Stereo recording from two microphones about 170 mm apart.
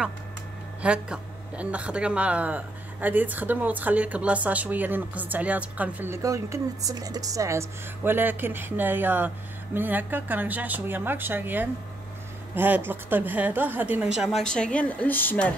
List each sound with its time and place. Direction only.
0.8 s a woman's voice: 5° right (ahead or behind); by 15.5 s 10° left (ahead or behind)